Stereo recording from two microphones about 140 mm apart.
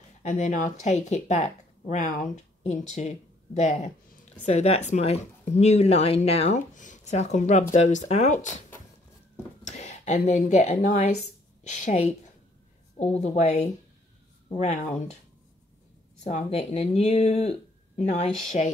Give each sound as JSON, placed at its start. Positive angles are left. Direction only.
{"t": 0.2, "sound": "speech", "side_deg": 55}
{"t": 9.7, "sound": "speech", "side_deg": 55}
{"t": 13.2, "sound": "speech", "side_deg": 55}
{"t": 16.3, "sound": "speech", "side_deg": 50}